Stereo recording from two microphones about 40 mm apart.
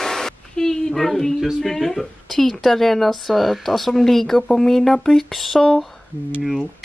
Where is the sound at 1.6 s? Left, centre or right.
Centre.